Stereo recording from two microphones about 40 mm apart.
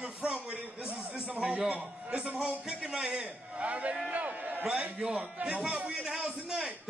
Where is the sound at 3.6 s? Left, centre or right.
Right.